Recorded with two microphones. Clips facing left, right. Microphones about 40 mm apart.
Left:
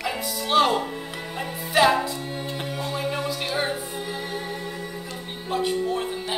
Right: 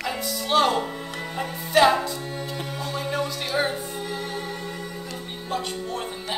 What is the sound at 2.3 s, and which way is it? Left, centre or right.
Music, centre.